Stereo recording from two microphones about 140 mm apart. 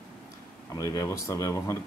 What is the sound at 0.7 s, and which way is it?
Speech, 25° left (ahead or behind).